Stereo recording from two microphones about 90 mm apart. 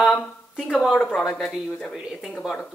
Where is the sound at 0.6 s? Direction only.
5° right (ahead or behind).